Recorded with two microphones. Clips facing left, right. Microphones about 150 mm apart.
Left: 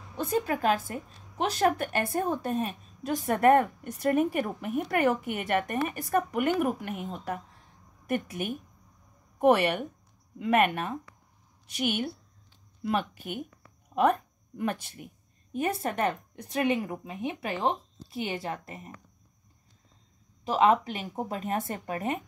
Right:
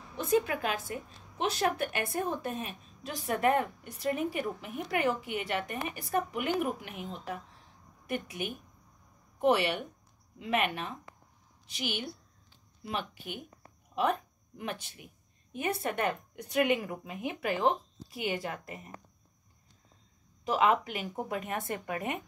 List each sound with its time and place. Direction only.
0.5 s a woman's voice: 40° left (ahead or behind)
20.4 s speech: 35° left (ahead or behind)